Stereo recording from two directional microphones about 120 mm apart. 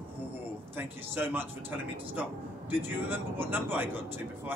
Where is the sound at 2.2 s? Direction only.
15° right (ahead or behind).